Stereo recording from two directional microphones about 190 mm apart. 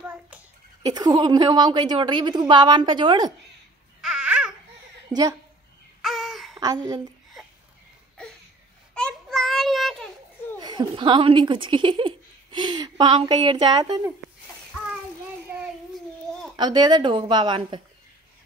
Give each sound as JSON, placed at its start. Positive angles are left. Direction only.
{"t": 0.0, "sound": "a sound", "side_deg": -10}
{"t": 0.8, "sound": "a woman's voice", "side_deg": -20}
{"t": 4.0, "sound": "babbling", "side_deg": -5}
{"t": 6.0, "sound": "a sound", "side_deg": 0}
{"t": 6.6, "sound": "a woman's voice", "side_deg": -20}
{"t": 8.9, "sound": "child singing", "side_deg": 5}
{"t": 10.6, "sound": "speech", "side_deg": -25}
{"t": 16.5, "sound": "a woman's voice", "side_deg": -20}